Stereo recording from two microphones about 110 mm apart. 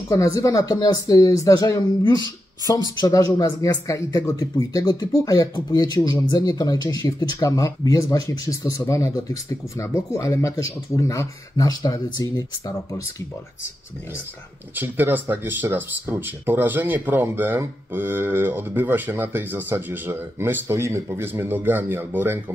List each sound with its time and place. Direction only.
0.1 s speech: 30° left (ahead or behind)
14.8 s speech: 15° right (ahead or behind)